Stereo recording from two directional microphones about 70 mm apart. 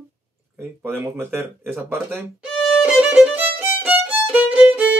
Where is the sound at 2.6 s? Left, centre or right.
Centre.